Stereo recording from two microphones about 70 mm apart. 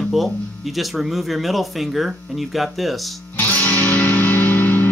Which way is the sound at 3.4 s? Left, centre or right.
Left.